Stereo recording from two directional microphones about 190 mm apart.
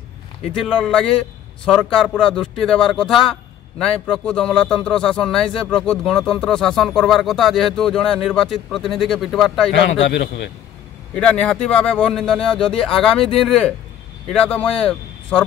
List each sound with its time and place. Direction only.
0.5 s a man's voice: 5° left (ahead or behind)
9.7 s a man's voice: 70° left (ahead or behind)
11.1 s a man's voice: 5° left (ahead or behind)